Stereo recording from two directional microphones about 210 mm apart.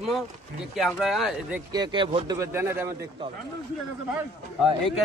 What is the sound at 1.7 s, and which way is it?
A man's voice, 20° right (ahead or behind).